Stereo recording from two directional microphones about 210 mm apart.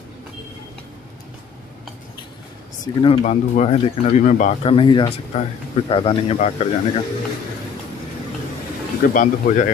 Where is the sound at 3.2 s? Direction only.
35° left (ahead or behind).